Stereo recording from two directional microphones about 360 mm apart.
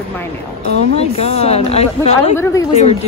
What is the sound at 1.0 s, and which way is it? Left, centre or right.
A woman's voice, centre.